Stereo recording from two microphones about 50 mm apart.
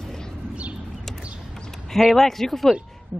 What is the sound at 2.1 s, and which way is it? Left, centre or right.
Speech, centre.